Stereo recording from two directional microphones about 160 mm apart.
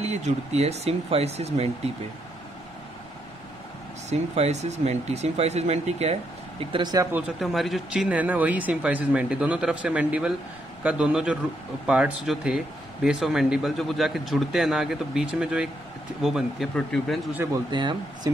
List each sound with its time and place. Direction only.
0.0 s speech: 40° right (ahead or behind)
4.1 s speech: 45° right (ahead or behind)
6.6 s speech: 30° right (ahead or behind)
7.1 s speech: 10° right (ahead or behind)
17.6 s speech: 30° right (ahead or behind)